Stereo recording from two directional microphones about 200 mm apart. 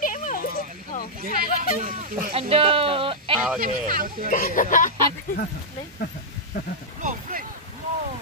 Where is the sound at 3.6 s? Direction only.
45° right (ahead or behind).